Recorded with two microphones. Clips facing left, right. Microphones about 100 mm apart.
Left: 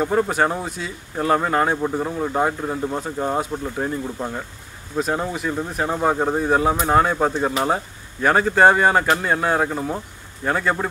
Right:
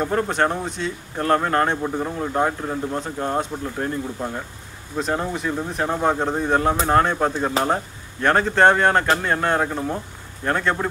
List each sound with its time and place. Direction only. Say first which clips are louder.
0.0 s speech: left 2 dB; 5° left (ahead or behind)